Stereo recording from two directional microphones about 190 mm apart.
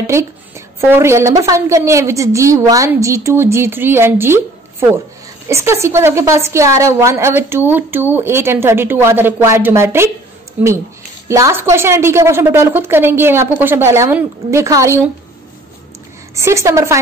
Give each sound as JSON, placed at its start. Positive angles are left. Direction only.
{"t": 0.0, "sound": "a sound", "side_deg": -15}
{"t": 0.7, "sound": "a woman's voice", "side_deg": -15}
{"t": 16.3, "sound": "a woman's voice", "side_deg": -15}